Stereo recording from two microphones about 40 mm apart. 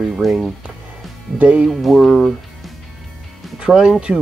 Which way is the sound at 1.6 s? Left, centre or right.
Centre.